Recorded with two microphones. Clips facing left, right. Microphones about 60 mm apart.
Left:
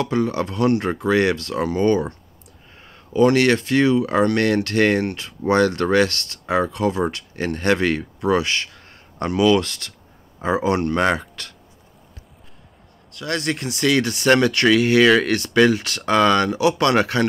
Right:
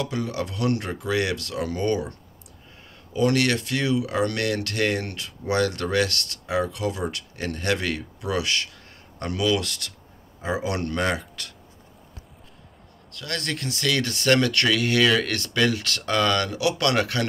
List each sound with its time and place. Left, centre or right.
0.0 s speech: left
3.1 s speech: left
13.1 s speech: centre